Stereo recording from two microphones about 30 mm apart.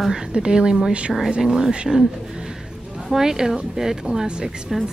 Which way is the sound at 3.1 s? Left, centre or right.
Centre.